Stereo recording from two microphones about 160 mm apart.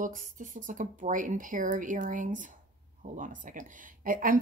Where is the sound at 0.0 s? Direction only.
55° right (ahead or behind).